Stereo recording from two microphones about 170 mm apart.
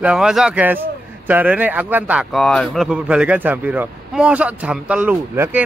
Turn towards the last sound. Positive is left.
turn(degrees=-10)  # may be behind; listen again after turning